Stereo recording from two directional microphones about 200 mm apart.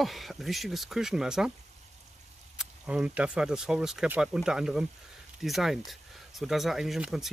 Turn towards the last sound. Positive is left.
turn(degrees=0)  # may be behind; listen again after turning